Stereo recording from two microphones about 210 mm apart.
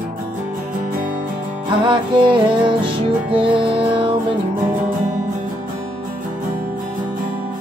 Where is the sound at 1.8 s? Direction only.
25° right (ahead or behind).